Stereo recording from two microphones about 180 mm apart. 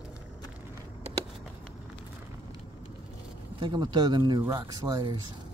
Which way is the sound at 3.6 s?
25° right (ahead or behind).